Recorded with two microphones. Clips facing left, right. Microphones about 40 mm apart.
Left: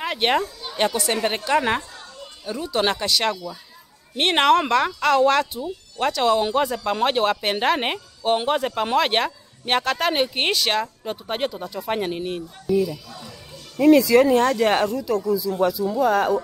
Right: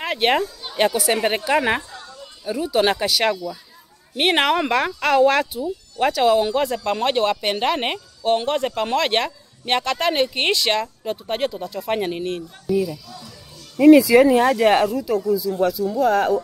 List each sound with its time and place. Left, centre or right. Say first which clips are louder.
0.0 s a woman's voice: right 2 dB; centre
12.9 s speech: even; left
13.7 s a woman's voice: right 3 dB; centre